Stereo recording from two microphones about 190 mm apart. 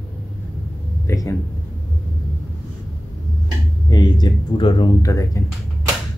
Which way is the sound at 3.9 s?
20° left (ahead or behind).